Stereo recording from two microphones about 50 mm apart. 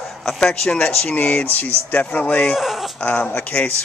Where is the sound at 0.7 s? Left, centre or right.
Left.